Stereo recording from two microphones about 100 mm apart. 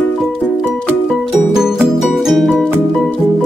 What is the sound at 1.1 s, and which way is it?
Music, 5° right (ahead or behind).